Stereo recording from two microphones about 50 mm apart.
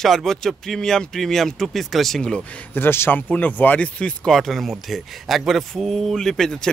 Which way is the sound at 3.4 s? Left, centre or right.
Left.